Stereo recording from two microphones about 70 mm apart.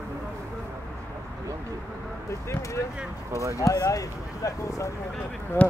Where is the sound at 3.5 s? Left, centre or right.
Left.